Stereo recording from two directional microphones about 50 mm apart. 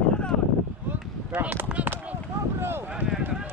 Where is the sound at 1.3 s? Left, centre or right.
Right.